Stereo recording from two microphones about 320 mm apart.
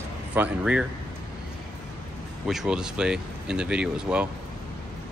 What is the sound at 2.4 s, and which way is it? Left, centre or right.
Speech, centre.